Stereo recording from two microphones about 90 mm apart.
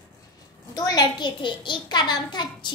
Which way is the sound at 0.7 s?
45° left (ahead or behind).